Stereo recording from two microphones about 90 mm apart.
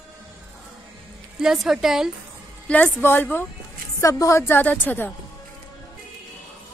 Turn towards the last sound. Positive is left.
turn(degrees=20)  # may be behind; listen again after turning